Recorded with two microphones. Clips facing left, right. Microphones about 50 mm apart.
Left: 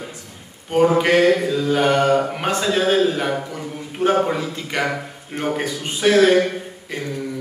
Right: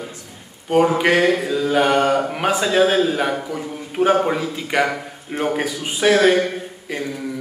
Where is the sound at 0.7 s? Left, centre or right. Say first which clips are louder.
Even; centre.